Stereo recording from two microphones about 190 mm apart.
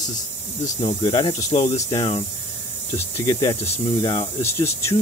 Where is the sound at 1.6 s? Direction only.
35° left (ahead or behind).